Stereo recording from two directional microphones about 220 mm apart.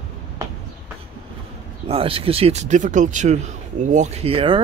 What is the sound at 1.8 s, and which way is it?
Speech, 25° right (ahead or behind).